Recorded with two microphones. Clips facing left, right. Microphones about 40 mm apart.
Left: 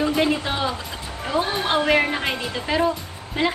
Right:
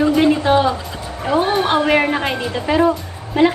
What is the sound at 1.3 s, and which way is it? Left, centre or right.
Speech, right.